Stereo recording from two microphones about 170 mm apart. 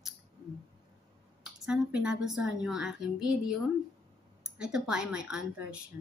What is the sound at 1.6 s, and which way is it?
A woman's voice, 5° right (ahead or behind).